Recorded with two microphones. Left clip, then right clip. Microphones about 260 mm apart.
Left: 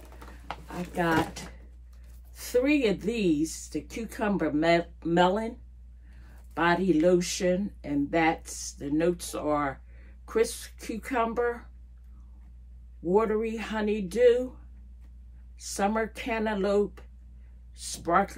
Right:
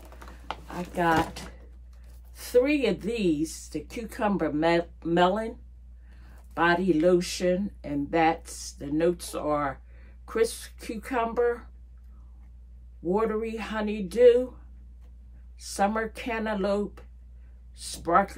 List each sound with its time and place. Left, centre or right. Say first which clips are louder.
0.5 s speech: right 2 dB; centre
6.5 s speech: right 1 dB; centre
13.1 s speech: left 2 dB; centre
15.6 s speech: right 1 dB; centre